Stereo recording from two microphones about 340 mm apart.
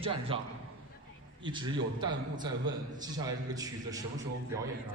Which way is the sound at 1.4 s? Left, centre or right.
Centre.